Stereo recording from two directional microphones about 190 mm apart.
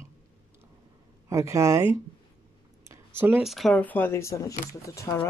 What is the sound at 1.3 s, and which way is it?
Speech, 15° right (ahead or behind).